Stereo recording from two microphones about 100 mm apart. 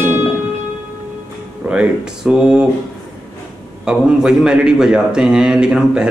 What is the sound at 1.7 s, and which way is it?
A man's voice, 10° right (ahead or behind).